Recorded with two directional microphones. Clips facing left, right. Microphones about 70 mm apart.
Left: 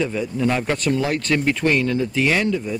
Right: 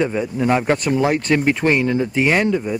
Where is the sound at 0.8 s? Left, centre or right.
Centre.